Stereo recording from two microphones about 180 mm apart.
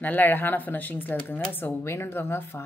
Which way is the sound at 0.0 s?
10° left (ahead or behind).